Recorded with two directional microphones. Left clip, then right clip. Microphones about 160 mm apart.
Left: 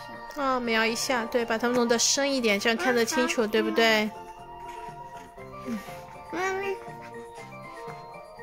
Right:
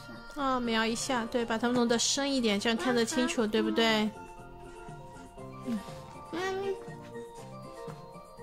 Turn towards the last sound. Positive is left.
turn(degrees=20)  # may be behind; listen again after turning